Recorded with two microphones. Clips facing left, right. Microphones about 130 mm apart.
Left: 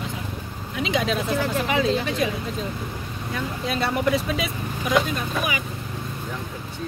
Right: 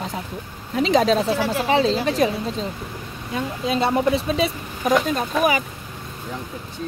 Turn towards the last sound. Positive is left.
turn(degrees=-40)  # may be behind; listen again after turning